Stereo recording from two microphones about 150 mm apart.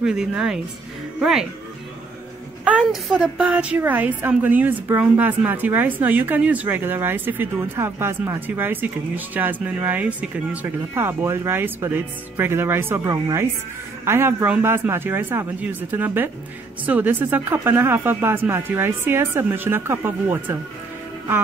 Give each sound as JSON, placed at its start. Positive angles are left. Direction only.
{"t": 0.0, "sound": "speech", "side_deg": -5}
{"t": 2.6, "sound": "a woman's voice", "side_deg": -5}